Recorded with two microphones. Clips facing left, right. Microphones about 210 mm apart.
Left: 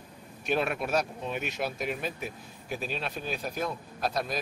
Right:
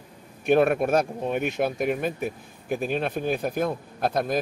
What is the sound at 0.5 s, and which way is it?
Speech, 50° right (ahead or behind).